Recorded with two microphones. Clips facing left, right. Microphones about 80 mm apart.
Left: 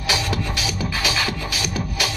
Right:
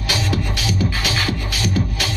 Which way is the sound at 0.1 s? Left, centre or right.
Centre.